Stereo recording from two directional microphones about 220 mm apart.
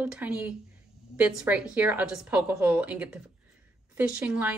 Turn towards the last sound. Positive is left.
turn(degrees=-5)  # may be behind; listen again after turning